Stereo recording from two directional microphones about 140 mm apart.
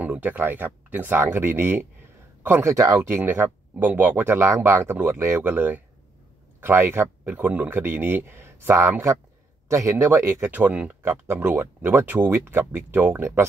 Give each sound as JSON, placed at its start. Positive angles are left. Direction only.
{"t": 0.0, "sound": "speech", "side_deg": -10}
{"t": 10.5, "sound": "speech", "side_deg": -10}